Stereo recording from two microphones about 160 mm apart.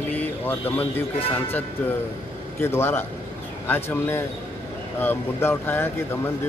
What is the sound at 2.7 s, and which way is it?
Speech, 15° left (ahead or behind).